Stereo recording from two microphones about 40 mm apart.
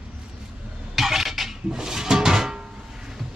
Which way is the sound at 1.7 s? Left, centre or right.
Centre.